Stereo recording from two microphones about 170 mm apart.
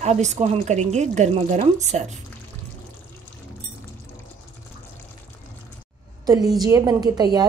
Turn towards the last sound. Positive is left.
turn(degrees=-25)  # may be behind; listen again after turning